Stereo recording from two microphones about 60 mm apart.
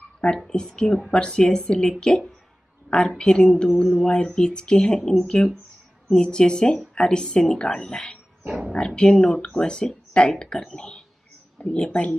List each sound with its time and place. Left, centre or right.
0.5 s speech: centre
8.5 s dog: centre
8.7 s speech: centre